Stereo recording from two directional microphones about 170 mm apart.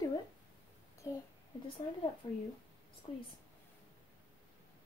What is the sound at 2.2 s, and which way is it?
Speech, 25° left (ahead or behind).